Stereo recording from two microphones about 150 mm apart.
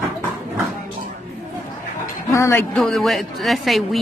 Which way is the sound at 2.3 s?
20° left (ahead or behind).